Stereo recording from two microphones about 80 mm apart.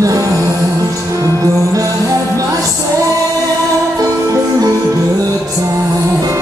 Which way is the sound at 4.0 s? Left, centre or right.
Right.